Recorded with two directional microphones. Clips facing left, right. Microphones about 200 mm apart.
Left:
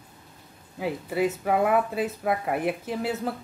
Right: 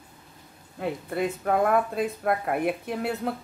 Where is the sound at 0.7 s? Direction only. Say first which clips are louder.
Left 1 dB; 5° left (ahead or behind).